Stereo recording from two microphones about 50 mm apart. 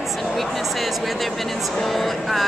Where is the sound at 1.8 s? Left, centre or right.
Centre.